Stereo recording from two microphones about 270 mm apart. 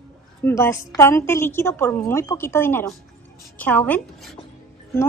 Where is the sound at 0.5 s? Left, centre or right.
Centre.